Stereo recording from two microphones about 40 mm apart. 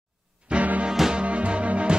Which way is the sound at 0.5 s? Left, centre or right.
Right.